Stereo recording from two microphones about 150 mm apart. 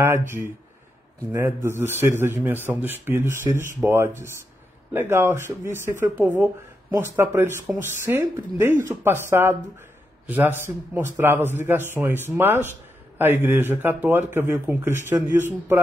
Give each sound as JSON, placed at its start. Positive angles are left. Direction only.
{"t": 1.3, "sound": "speech", "side_deg": -15}